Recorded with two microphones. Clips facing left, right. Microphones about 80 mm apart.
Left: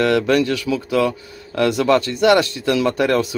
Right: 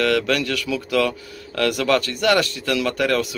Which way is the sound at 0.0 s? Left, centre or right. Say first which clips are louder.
Left 4 dB; left.